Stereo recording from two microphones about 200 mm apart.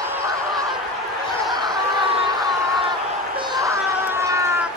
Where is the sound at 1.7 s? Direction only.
20° right (ahead or behind).